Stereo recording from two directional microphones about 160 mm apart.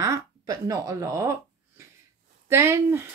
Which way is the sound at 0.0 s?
20° right (ahead or behind).